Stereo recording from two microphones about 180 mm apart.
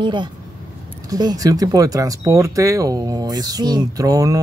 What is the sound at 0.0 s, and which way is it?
Speech, 25° right (ahead or behind).